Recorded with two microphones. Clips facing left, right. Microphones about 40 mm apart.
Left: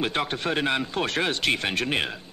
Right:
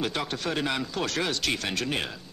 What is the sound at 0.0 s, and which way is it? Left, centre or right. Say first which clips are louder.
A man's voice: left 3 dB; left.